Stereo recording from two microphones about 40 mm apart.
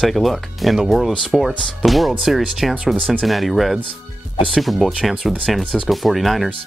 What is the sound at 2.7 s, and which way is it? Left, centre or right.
Speech, right.